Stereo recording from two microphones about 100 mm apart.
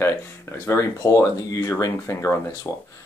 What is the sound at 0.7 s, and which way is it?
Speech, 30° left (ahead or behind).